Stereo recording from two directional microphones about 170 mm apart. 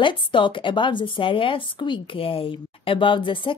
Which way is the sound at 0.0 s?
30° left (ahead or behind).